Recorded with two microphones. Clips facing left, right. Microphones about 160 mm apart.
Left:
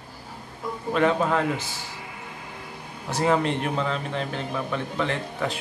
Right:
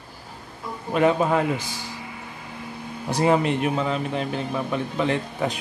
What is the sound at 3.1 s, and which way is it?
A man's voice, 15° right (ahead or behind).